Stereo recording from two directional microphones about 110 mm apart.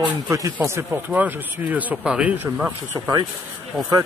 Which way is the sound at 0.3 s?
25° right (ahead or behind).